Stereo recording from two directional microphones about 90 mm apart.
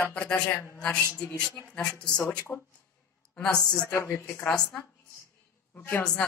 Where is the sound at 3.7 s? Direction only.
30° left (ahead or behind).